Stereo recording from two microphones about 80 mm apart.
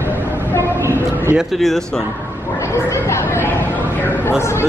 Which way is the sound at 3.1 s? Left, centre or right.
Left.